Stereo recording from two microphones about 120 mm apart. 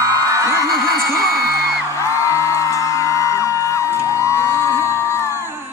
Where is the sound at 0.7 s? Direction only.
Centre (ahead or behind).